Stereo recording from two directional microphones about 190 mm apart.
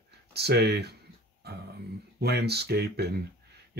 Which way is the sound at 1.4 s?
60° right (ahead or behind).